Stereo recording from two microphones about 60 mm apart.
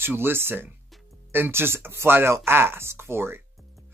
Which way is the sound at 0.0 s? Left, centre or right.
Right.